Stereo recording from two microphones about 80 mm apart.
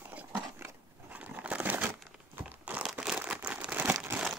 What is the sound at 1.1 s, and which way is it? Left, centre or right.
Crumpling, centre.